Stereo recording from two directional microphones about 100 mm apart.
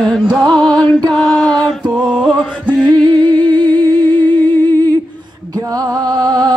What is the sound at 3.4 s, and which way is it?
Humming, 15° left (ahead or behind).